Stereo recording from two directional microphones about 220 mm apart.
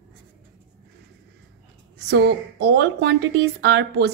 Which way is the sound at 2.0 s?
50° right (ahead or behind).